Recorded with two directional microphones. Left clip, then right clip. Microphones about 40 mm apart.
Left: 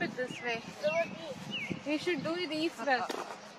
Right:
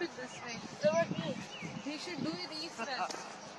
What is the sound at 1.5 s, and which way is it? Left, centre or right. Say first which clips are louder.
Speech: left 7 dB; left.